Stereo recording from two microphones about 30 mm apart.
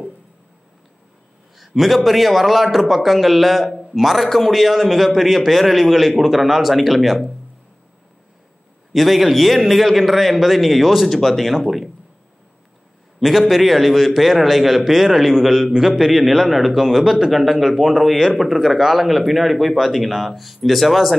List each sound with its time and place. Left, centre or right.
1.8 s a man's voice: centre
8.9 s a man's voice: centre
13.2 s a man's voice: centre